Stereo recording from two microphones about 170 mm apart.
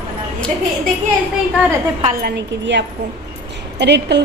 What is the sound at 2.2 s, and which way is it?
A woman's voice, 70° right (ahead or behind).